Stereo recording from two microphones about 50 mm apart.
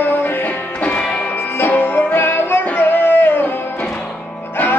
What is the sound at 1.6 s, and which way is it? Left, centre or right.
Music, left.